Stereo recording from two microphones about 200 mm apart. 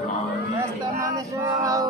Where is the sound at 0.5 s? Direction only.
15° right (ahead or behind).